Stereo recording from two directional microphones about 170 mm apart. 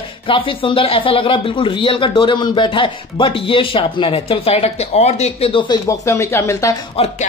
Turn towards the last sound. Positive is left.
turn(degrees=35)  # may be behind; listen again after turning